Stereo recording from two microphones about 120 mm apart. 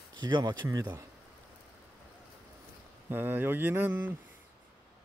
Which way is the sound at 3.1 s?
15° right (ahead or behind).